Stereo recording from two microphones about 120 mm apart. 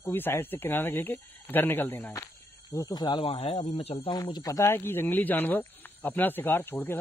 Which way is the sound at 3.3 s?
50° left (ahead or behind).